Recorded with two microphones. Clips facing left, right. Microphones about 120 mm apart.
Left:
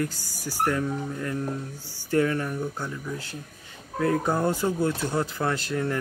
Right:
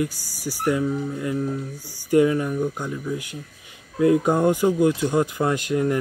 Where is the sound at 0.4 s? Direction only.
15° right (ahead or behind).